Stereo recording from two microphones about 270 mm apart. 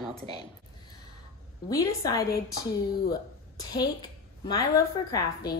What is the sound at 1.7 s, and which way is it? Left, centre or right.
A woman's voice, centre.